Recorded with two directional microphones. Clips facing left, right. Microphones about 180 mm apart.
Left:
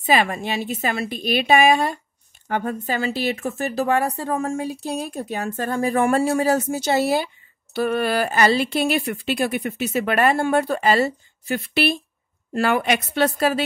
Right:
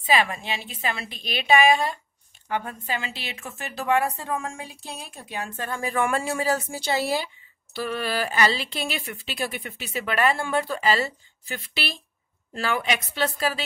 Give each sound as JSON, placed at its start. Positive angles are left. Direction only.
{"t": 0.0, "sound": "speech", "side_deg": 45}